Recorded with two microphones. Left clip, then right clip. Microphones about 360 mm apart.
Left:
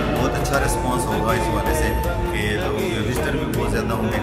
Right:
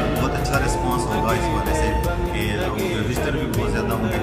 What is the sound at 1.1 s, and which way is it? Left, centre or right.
Speech, centre.